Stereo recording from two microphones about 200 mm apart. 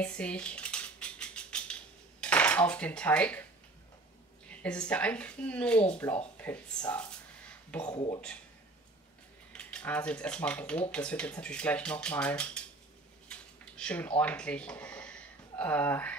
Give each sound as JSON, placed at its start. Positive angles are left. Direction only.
{"t": 0.0, "sound": "cutlery", "side_deg": 5}
{"t": 4.5, "sound": "a woman's voice", "side_deg": 5}
{"t": 6.9, "sound": "a sound", "side_deg": 5}
{"t": 7.9, "sound": "speech", "side_deg": 25}
{"t": 9.5, "sound": "speech", "side_deg": 5}
{"t": 13.3, "sound": "a sound", "side_deg": 5}